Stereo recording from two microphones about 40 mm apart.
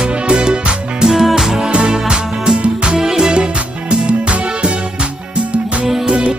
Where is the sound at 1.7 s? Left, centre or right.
Right.